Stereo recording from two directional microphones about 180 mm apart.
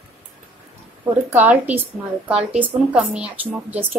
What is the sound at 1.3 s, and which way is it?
A woman's voice, 10° right (ahead or behind).